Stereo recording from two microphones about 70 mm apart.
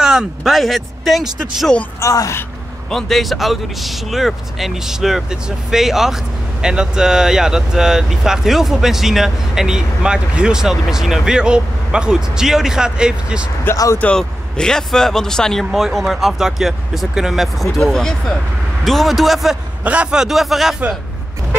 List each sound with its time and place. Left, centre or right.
0.0 s speech: centre
2.0 s speech: left
2.9 s speech: centre
14.1 s speech: centre
19.8 s speech: centre